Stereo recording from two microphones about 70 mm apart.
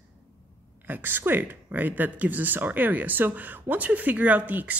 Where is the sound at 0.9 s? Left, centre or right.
Right.